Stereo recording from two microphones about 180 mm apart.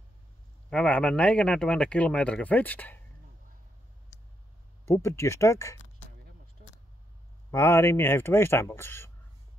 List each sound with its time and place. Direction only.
0.7 s speech: 5° left (ahead or behind)
4.8 s speech: 15° left (ahead or behind)
7.5 s speech: 15° left (ahead or behind)